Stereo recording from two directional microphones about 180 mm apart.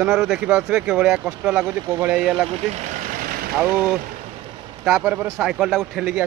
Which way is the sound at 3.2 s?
55° right (ahead or behind).